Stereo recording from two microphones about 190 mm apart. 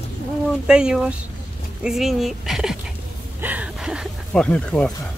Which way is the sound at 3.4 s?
5° right (ahead or behind).